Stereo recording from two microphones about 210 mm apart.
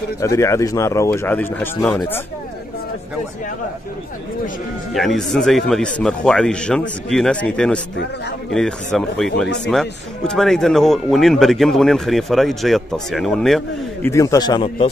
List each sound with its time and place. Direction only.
0.2 s speech: 15° left (ahead or behind)
4.9 s speech: centre (ahead or behind)
14.0 s speech: 15° left (ahead or behind)